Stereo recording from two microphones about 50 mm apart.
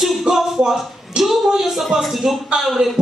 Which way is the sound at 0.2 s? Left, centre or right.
Centre.